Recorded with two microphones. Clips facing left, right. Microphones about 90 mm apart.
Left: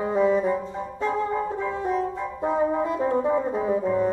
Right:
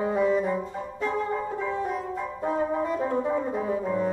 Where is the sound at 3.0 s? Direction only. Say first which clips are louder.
Left 3 dB; 15° left (ahead or behind).